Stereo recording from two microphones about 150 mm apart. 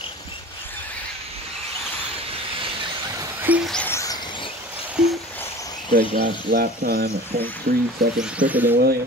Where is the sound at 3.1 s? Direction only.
20° right (ahead or behind).